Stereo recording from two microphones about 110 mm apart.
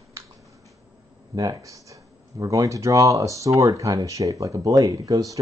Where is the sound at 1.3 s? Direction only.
30° right (ahead or behind).